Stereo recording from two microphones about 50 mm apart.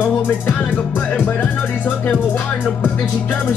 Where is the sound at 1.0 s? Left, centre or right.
Left.